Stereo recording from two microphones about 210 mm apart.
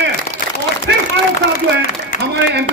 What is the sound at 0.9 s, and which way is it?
Speech, 55° right (ahead or behind).